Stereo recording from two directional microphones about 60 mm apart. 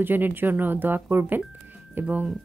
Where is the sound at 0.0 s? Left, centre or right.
Right.